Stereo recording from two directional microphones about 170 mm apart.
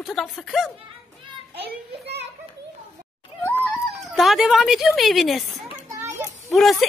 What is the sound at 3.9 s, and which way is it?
Speech, centre (ahead or behind).